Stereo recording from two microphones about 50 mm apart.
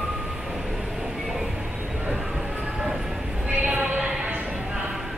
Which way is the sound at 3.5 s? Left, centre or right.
Right.